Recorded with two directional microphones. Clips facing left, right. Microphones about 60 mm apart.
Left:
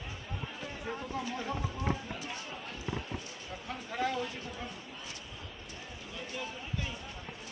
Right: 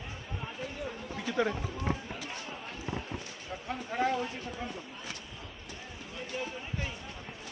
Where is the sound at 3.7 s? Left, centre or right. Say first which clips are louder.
Right 4 dB; right.